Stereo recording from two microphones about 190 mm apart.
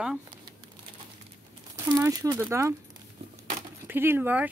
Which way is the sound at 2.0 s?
20° right (ahead or behind).